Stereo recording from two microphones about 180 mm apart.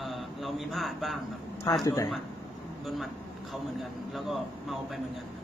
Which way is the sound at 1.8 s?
20° left (ahead or behind).